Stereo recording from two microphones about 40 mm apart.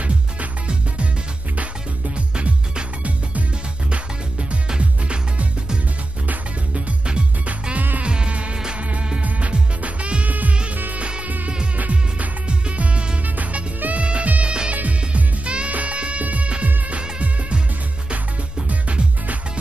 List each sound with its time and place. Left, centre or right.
1.6 s music: right
3.9 s music: right
8.0 s music: right
10.7 s music: right
11.0 s music: right
13.2 s music: right
14.0 s music: right
18.7 s music: right